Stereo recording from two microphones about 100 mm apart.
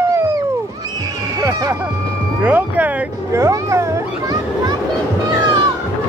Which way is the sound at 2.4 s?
15° right (ahead or behind).